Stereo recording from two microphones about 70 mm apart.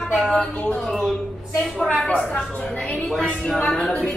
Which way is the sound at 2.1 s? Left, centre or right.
Centre.